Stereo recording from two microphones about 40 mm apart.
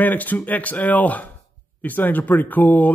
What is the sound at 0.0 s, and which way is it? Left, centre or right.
Speech, left.